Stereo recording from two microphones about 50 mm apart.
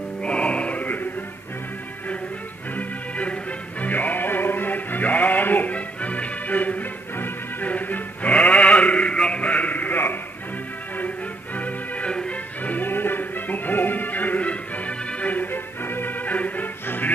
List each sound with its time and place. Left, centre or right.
0.2 s music: left
2.7 s music: left
11.5 s organ: left
12.1 s music: centre
12.6 s music: left